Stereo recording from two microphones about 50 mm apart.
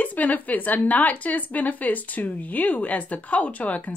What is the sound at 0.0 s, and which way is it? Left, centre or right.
A woman's voice, left.